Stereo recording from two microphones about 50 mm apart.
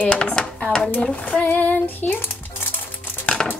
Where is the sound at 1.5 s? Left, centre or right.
Left.